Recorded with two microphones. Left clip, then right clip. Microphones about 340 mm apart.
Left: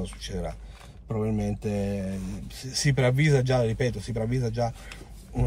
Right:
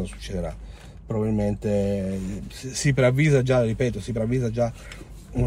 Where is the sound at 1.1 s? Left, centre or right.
Centre.